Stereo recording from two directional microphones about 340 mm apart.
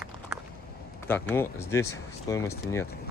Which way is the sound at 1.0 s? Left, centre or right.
Centre.